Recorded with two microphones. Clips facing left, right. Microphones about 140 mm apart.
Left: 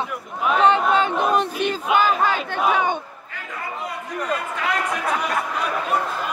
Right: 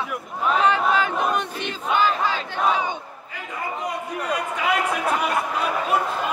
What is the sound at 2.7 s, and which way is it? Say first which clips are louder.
Battle cry: left 6 dB; 60° left (ahead or behind).